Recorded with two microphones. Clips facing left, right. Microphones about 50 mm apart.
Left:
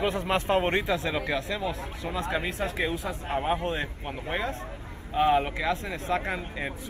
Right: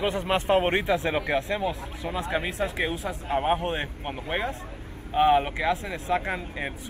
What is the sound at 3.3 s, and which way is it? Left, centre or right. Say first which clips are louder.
Speech: right 3 dB; right.